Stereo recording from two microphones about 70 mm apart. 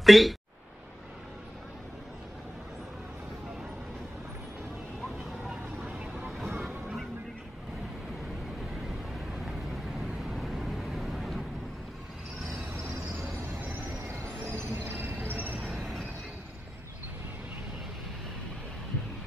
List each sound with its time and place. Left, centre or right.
0.0 s speech: centre
5.9 s vehicle: centre
9.9 s vehicle: centre
14.5 s a sound: right
15.2 s train: right
15.7 s train: centre